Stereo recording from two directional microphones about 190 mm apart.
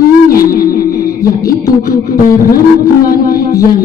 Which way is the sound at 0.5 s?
50° left (ahead or behind).